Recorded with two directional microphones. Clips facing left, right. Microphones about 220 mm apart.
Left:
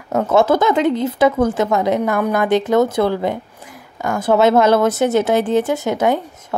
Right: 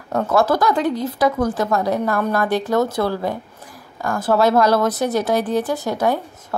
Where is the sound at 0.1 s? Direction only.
20° left (ahead or behind).